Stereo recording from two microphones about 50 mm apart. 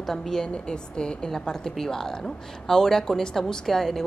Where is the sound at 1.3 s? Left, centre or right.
Centre.